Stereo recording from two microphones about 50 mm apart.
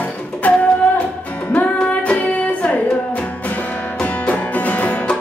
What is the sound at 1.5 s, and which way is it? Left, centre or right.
Music, left.